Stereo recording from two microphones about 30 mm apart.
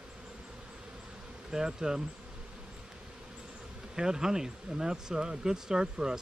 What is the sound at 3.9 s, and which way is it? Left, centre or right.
Speech, right.